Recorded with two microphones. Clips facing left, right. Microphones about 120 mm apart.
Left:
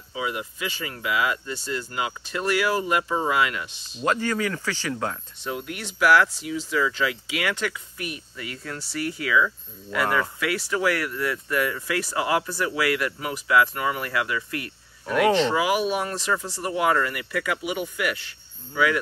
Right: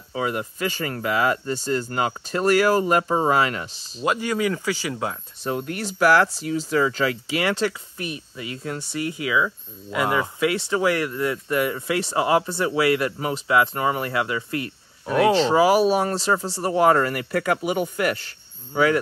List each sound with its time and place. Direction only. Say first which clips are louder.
0.1 s speech: right 4 dB; 50° right (ahead or behind)
4.0 s speech: right 2 dB; 10° right (ahead or behind)
5.4 s speech: right 6 dB; 40° right (ahead or behind)